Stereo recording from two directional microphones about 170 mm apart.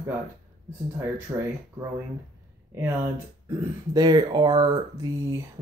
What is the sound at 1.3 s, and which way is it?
Speech, 15° right (ahead or behind).